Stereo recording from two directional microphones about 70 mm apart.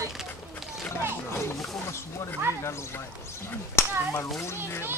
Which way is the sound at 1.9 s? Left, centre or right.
Left.